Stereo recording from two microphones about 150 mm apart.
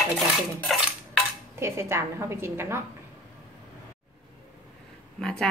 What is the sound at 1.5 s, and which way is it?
A woman's voice, 15° right (ahead or behind).